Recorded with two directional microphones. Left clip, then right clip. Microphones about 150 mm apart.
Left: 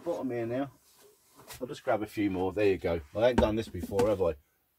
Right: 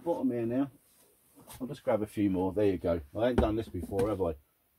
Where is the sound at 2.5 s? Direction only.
40° right (ahead or behind).